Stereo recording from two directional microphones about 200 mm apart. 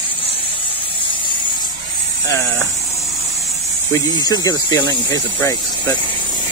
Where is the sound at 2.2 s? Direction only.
15° left (ahead or behind).